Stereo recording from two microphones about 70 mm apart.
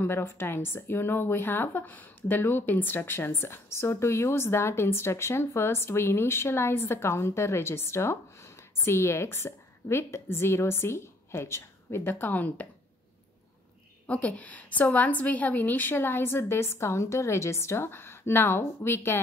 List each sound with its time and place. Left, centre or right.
0.0 s a woman's voice: left
14.0 s a woman's voice: left